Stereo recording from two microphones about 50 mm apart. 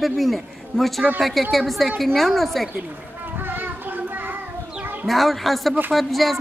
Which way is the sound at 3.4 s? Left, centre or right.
Right.